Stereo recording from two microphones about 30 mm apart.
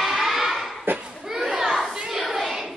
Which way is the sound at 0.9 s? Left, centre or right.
Right.